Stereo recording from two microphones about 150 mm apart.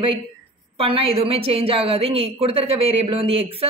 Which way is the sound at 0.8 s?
40° right (ahead or behind).